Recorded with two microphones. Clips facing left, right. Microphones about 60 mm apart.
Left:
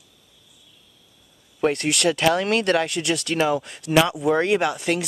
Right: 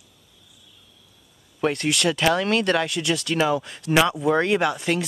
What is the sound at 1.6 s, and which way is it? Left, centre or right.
Speech, left.